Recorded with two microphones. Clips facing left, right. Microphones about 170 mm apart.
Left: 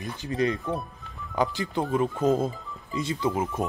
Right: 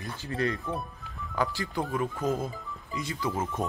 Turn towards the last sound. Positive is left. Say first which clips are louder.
# left 5 dB
turn(degrees=20)  # may be behind; listen again after turning